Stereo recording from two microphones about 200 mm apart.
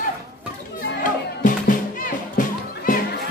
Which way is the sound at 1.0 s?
40° left (ahead or behind).